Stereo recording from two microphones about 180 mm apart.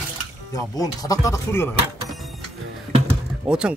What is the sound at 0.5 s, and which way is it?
Speech, 20° left (ahead or behind).